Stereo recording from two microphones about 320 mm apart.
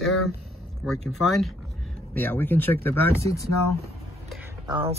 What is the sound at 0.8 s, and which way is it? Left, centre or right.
Speech, centre.